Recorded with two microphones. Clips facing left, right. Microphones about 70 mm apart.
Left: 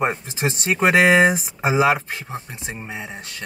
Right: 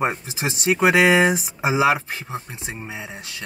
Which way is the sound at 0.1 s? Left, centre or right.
Left.